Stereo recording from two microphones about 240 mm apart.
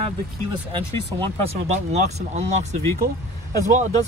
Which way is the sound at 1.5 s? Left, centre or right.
Right.